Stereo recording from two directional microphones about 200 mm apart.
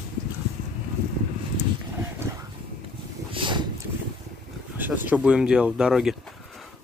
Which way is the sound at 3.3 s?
25° right (ahead or behind).